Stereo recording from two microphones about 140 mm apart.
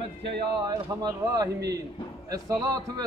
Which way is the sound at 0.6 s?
25° right (ahead or behind).